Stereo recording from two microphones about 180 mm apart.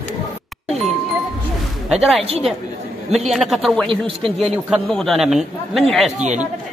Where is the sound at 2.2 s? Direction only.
35° right (ahead or behind).